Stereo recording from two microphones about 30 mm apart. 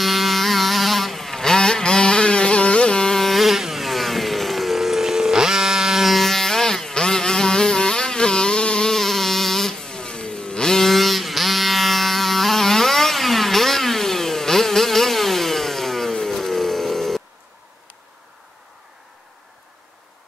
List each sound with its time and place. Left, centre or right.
0.0 s vehicle: centre; by 3.0 s left
3.2 s a sound: centre
6.1 s insect: centre; by 8.8 s left
8.8 s vehicle: centre
10.8 s music: centre
16.4 s a sound: centre